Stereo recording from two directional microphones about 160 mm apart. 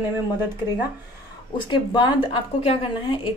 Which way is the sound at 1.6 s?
30° left (ahead or behind).